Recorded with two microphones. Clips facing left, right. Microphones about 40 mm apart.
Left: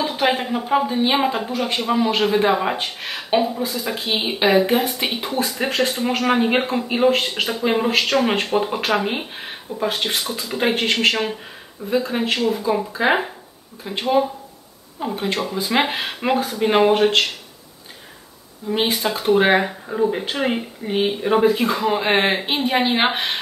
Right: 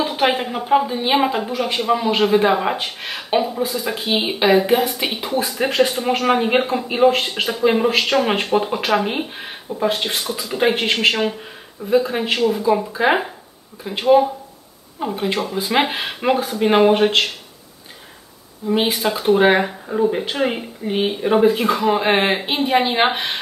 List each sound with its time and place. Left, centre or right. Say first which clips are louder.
0.0 s a sound: right 1 dB; centre
0.7 s speech: right 2 dB; centre
18.7 s speech: right 2 dB; centre